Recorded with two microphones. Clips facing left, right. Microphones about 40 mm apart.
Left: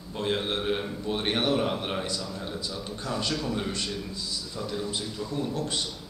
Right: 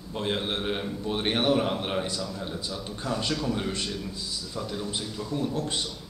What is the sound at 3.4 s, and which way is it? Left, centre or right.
A man's voice, centre.